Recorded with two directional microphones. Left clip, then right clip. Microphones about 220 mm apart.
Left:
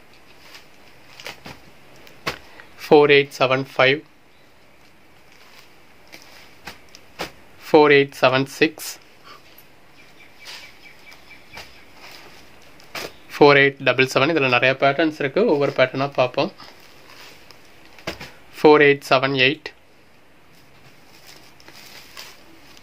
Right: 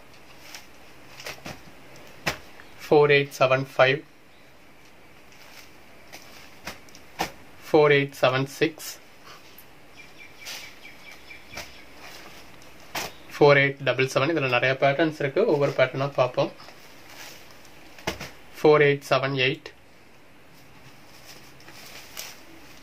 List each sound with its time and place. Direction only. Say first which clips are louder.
2.8 s speech: left 5 dB; 45° left (ahead or behind)
7.6 s speech: left 5 dB; 45° left (ahead or behind)
13.3 s speech: left 5 dB; 45° left (ahead or behind)
18.5 s speech: left 5 dB; 45° left (ahead or behind)